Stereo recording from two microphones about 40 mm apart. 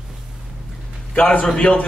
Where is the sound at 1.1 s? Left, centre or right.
Left.